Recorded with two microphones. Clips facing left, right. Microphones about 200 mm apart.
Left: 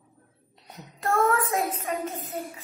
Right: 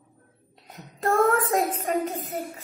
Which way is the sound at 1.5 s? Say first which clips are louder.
Right 3 dB; 30° right (ahead or behind).